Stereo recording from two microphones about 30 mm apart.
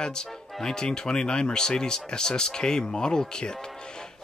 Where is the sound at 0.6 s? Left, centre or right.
Left.